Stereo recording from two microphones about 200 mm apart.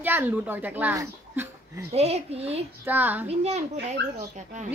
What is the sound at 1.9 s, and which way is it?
Speech, 30° right (ahead or behind).